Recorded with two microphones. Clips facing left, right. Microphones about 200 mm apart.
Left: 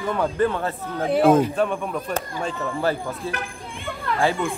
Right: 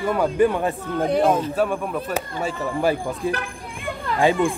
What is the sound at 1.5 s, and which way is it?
Speech, 5° right (ahead or behind).